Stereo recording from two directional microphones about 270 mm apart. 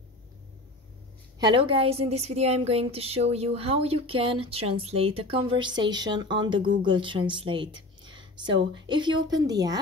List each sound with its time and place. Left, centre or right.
1.4 s a woman's voice: centre